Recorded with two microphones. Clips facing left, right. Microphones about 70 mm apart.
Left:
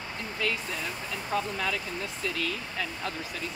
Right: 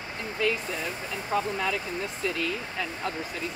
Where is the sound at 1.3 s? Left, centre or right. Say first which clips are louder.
Right 3 dB; right.